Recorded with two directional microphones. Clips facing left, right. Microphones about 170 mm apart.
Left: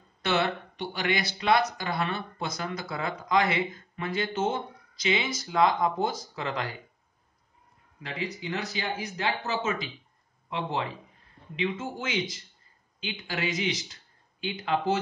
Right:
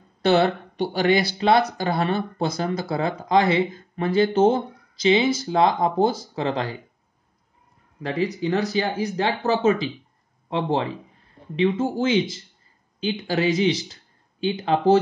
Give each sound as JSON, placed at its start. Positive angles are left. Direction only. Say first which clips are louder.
{"t": 0.2, "sound": "speech", "louder": "right 9 dB", "side_deg": -30}
{"t": 8.0, "sound": "speech", "louder": "right 11 dB", "side_deg": -40}